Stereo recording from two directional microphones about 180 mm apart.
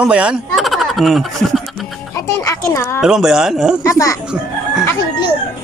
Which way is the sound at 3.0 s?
5° right (ahead or behind).